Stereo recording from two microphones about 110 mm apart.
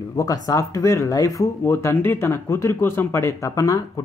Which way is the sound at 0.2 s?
30° left (ahead or behind).